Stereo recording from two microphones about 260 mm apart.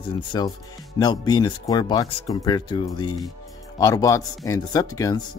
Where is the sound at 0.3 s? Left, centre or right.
Centre.